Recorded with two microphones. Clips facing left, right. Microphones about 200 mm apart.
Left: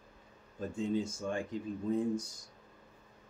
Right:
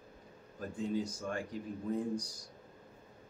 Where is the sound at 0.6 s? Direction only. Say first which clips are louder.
Left 2 dB; 25° left (ahead or behind).